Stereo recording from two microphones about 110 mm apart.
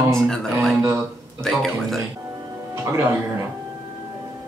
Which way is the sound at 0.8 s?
20° right (ahead or behind).